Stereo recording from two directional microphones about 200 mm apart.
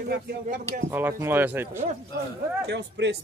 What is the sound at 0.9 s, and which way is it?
Speech, 10° right (ahead or behind).